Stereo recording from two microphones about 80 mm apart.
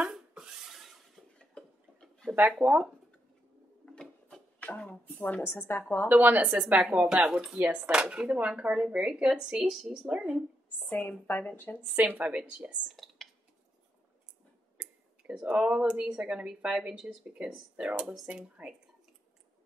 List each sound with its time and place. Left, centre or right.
0.0 s a sound: centre
1.4 s tick-tock: centre
2.6 s speech: centre
3.8 s wood: centre
4.6 s speech: centre
5.4 s speech: left
6.0 s speech: right
11.1 s speech: left
11.8 s speech: right
12.8 s a sound: centre
14.8 s speech: centre